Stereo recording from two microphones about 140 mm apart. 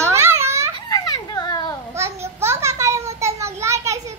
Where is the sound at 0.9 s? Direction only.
30° left (ahead or behind).